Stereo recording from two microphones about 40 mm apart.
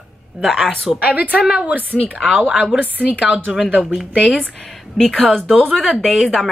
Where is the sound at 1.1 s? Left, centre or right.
Right.